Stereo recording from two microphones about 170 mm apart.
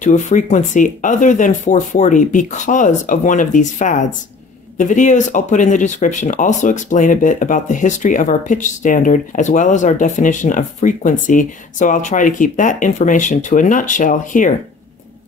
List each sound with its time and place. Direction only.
0.0 s speech: 45° left (ahead or behind)